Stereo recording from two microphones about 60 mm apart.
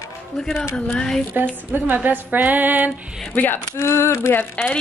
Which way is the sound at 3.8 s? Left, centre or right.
Left.